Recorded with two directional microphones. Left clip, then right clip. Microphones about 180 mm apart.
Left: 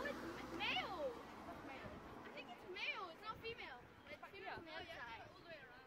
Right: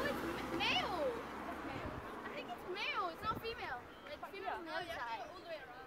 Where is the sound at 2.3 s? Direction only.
50° right (ahead or behind).